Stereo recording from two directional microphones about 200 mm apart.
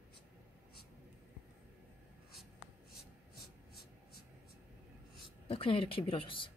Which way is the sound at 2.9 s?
50° left (ahead or behind).